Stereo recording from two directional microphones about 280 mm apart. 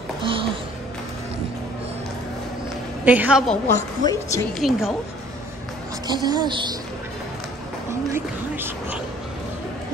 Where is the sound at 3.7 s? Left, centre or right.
Centre.